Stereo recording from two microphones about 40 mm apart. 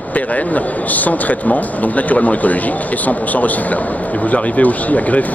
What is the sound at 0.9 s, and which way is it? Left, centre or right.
A man's voice, left.